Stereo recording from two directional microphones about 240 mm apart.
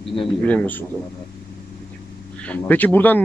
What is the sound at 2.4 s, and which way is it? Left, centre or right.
Speech, centre.